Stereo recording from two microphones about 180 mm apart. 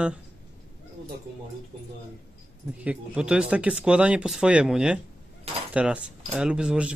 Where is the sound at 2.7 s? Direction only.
5° right (ahead or behind).